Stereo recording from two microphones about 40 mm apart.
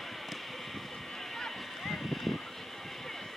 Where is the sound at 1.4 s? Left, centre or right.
Centre.